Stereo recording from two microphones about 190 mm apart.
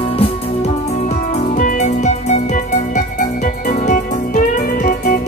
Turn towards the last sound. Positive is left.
turn(degrees=45)  # may be behind; listen again after turning